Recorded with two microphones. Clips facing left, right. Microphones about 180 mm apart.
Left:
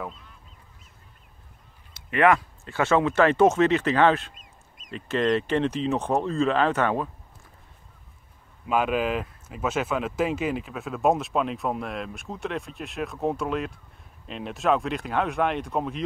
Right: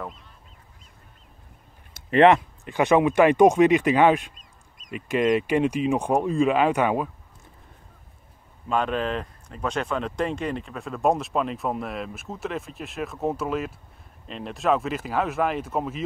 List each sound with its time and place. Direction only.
2.0 s speech: 25° right (ahead or behind)
4.4 s duck: 45° right (ahead or behind)
4.9 s speech: 15° right (ahead or behind)
8.6 s speech: 5° left (ahead or behind)